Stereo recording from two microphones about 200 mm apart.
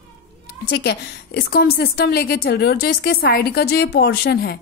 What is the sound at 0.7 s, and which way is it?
A woman's voice, 55° left (ahead or behind).